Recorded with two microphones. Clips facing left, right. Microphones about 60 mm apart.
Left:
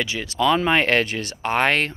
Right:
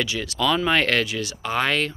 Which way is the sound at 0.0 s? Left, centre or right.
Left.